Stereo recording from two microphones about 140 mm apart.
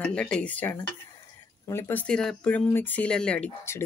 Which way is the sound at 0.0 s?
10° left (ahead or behind).